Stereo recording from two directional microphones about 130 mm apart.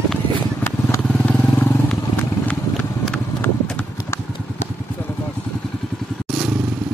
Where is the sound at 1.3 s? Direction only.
10° left (ahead or behind).